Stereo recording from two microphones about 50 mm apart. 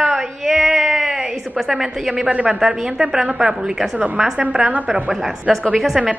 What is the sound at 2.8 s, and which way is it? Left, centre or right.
A woman's voice, centre.